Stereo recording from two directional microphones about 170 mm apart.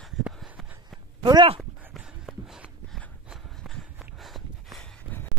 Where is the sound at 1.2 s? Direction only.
30° right (ahead or behind).